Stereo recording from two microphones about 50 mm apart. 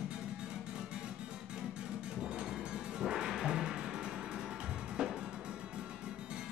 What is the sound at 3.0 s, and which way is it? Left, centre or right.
Music, centre.